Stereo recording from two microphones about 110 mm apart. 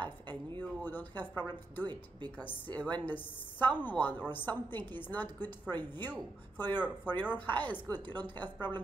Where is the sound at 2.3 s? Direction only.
15° left (ahead or behind).